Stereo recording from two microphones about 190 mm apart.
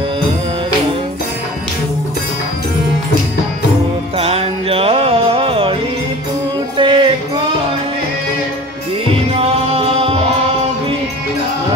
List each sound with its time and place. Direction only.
4.2 s music: 30° right (ahead or behind)
6.8 s music: 25° right (ahead or behind)
9.0 s music: 30° right (ahead or behind)